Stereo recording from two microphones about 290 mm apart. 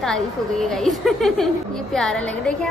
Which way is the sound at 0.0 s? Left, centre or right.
Centre.